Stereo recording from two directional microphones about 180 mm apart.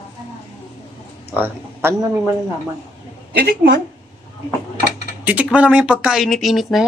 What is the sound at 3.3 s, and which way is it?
Speech, 55° right (ahead or behind).